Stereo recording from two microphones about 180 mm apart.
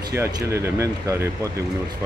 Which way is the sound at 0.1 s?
15° right (ahead or behind).